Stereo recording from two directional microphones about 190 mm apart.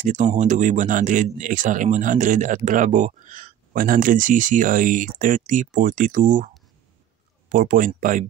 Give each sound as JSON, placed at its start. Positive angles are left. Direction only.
{"t": 0.0, "sound": "speech", "side_deg": -40}